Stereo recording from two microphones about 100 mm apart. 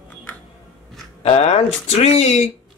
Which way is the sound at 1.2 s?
90° left.